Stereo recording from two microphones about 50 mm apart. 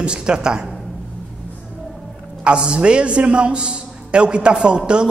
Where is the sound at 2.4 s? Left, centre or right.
Centre.